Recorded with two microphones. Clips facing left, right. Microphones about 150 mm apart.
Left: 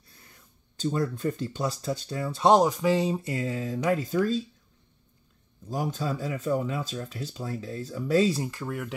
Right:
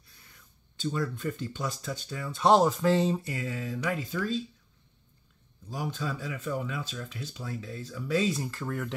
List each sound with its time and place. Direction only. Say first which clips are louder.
0.7 s speech: left 4 dB; 40° left (ahead or behind)
2.4 s speech: left 2 dB; 15° left (ahead or behind)
3.2 s speech: left 4 dB; 25° left (ahead or behind)
5.7 s speech: left 4 dB; 40° left (ahead or behind)
8.5 s speech: left 1 dB; 10° left (ahead or behind)